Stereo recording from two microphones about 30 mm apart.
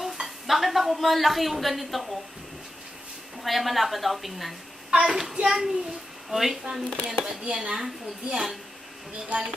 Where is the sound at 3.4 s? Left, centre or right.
Centre.